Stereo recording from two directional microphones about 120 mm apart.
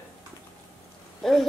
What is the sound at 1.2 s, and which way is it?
Speech, 5° left (ahead or behind).